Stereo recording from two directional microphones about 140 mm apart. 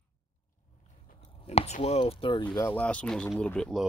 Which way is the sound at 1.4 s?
50° left (ahead or behind).